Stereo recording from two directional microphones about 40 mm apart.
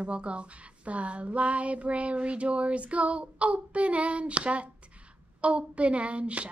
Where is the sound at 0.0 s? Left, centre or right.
Right.